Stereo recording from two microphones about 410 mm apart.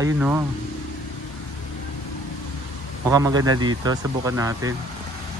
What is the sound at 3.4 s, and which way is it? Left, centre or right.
Speech, right.